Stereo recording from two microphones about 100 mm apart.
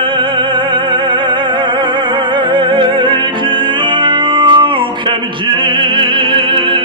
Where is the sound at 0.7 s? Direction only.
55° right (ahead or behind).